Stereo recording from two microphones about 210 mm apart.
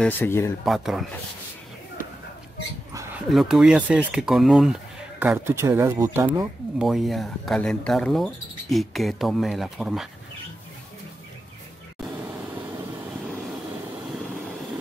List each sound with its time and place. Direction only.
0.0 s speech: 10° left (ahead or behind)
0.7 s speech: centre (ahead or behind)
2.9 s dog: 15° right (ahead or behind)
3.3 s speech: centre (ahead or behind)